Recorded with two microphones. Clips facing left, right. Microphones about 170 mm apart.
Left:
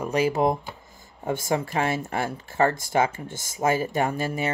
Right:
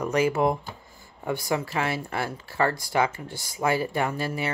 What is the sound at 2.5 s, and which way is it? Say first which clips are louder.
Speech: left 3 dB; 20° left (ahead or behind).